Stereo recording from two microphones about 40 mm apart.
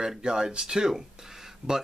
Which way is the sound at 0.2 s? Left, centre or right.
Right.